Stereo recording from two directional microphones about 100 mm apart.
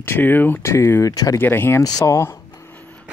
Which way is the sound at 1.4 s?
20° left (ahead or behind).